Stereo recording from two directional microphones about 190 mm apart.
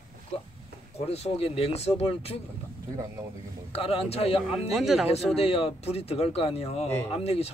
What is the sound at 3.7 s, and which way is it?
Speech, 30° left (ahead or behind).